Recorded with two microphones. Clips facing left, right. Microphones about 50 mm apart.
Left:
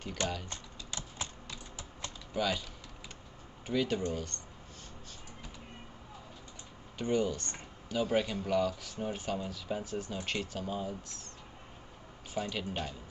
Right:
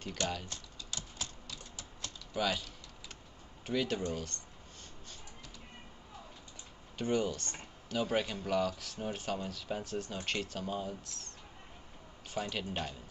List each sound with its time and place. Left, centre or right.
0.5 s typing: left
2.3 s speech: centre
3.6 s speech: centre
7.0 s speech: centre
12.4 s speech: centre